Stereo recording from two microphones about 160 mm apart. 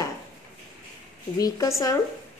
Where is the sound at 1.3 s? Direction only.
20° left (ahead or behind).